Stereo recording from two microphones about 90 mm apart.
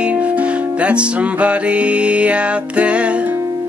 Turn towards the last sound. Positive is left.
turn(degrees=-15)  # may be behind; listen again after turning